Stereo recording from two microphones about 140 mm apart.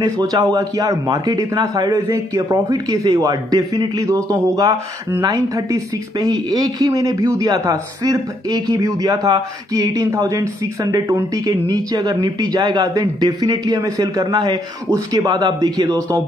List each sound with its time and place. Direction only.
0.0 s speech: 25° right (ahead or behind)